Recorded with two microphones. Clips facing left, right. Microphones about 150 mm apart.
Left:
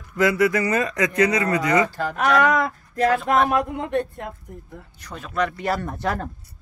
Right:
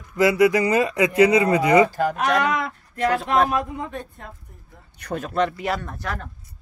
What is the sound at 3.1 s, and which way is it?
Speech, 35° right (ahead or behind).